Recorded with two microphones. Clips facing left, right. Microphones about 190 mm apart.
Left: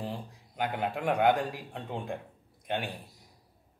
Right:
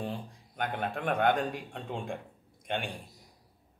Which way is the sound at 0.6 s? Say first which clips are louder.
Left 2 dB; 10° left (ahead or behind).